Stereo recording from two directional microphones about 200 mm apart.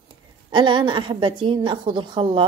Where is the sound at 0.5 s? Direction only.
25° right (ahead or behind).